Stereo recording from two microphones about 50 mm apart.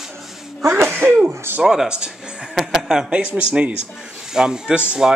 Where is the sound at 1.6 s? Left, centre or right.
Centre.